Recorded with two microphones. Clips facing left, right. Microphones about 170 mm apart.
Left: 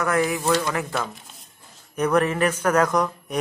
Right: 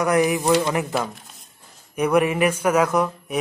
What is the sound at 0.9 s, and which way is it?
Speech, centre (ahead or behind).